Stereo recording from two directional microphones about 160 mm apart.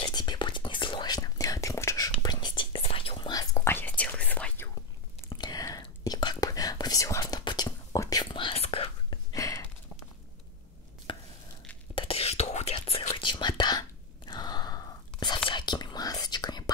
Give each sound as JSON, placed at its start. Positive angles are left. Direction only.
{"t": 0.1, "sound": "whispering", "side_deg": 25}
{"t": 5.3, "sound": "whispering", "side_deg": 25}
{"t": 9.3, "sound": "a sound", "side_deg": 20}
{"t": 11.1, "sound": "chopping", "side_deg": 30}
{"t": 11.9, "sound": "whispering", "side_deg": 35}